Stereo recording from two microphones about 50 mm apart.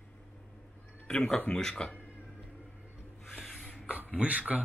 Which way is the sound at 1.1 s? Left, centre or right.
Centre.